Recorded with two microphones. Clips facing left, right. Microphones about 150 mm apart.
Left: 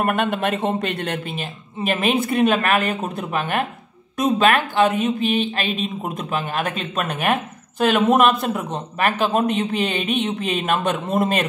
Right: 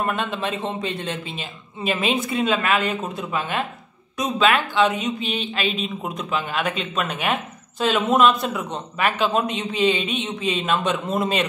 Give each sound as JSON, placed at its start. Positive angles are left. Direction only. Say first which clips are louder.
{"t": 0.0, "sound": "speech", "louder": "left 4 dB", "side_deg": 55}